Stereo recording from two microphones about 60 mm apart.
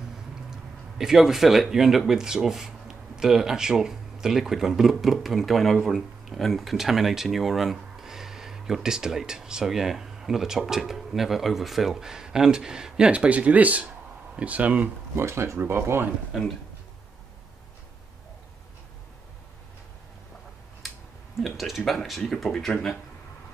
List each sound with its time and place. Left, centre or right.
0.5 s speech: centre; by 14.9 s right
15.1 s speech: right
20.8 s a sound: centre
21.4 s speech: centre